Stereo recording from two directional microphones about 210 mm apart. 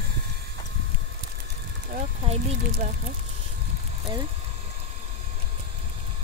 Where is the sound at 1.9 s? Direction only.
35° right (ahead or behind).